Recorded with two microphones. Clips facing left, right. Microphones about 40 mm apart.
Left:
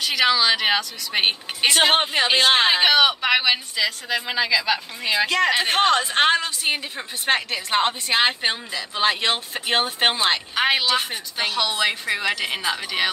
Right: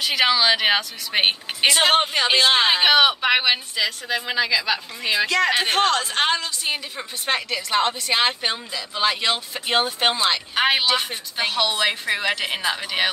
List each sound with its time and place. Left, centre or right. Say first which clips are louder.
0.0 s speech: even; centre
1.8 s speech: left 1 dB; centre
2.9 s speech: right 1 dB; centre
5.2 s a woman's voice: even; left
10.5 s speech: right 2 dB; centre